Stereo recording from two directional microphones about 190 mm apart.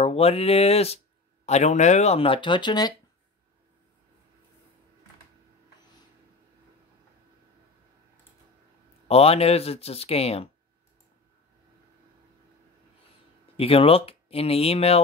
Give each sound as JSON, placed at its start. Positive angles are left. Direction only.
{"t": 0.0, "sound": "speech", "side_deg": 30}
{"t": 9.0, "sound": "speech", "side_deg": 30}
{"t": 13.6, "sound": "speech", "side_deg": 30}